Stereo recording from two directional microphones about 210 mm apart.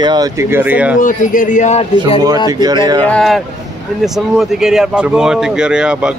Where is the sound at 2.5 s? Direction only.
20° right (ahead or behind).